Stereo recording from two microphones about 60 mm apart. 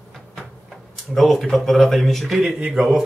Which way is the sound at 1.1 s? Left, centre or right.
Centre.